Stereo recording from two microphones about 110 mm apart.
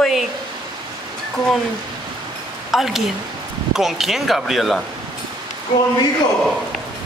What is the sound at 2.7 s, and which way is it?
Speech, centre (ahead or behind).